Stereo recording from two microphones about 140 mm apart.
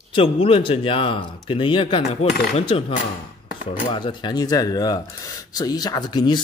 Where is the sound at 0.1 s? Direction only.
40° left (ahead or behind).